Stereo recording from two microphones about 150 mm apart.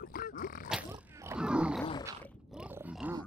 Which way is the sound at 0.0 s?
70° left (ahead or behind).